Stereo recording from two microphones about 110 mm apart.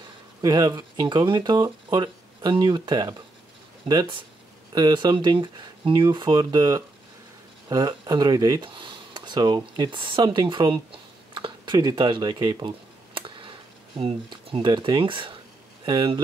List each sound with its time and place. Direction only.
0.4 s speech: 35° right (ahead or behind)
8.6 s speech: 50° right (ahead or behind)